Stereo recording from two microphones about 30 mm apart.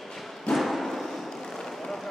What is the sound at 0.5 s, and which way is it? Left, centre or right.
Thump, centre.